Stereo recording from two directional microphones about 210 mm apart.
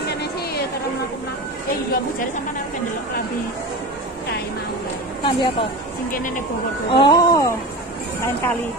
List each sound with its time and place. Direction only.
5.2 s speech: 20° left (ahead or behind)
6.1 s speech: 40° left (ahead or behind)
6.9 s speech: 20° left (ahead or behind)